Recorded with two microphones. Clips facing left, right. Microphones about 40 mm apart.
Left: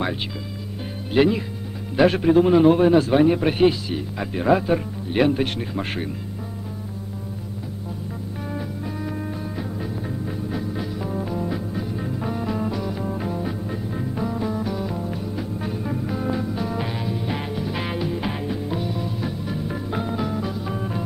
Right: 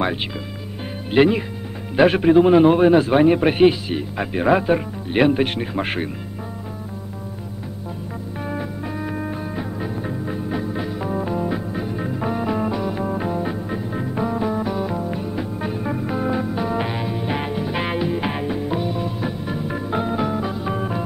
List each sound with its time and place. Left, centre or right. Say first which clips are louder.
1.1 s a man's voice: right 3 dB; right
8.5 s music: right 3 dB; right